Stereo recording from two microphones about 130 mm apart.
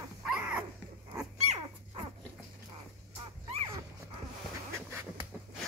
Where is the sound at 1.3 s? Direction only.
55° right (ahead or behind).